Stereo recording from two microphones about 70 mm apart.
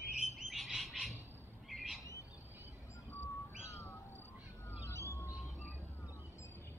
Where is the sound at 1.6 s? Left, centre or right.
Centre.